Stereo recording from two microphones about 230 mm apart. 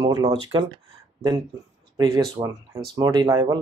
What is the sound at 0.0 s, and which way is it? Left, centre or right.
Speech, centre.